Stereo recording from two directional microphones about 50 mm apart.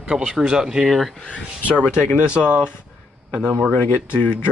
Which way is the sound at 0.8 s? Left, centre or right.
Centre.